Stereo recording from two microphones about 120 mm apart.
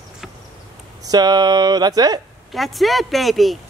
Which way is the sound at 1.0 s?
35° right (ahead or behind).